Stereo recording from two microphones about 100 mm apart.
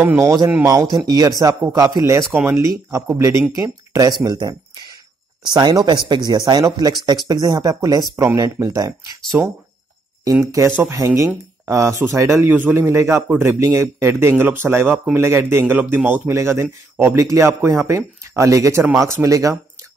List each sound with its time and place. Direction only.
0.2 s speech: 30° right (ahead or behind)
0.8 s speech: 45° right (ahead or behind)
10.4 s speech: 35° right (ahead or behind)
12.4 s speech: 20° right (ahead or behind)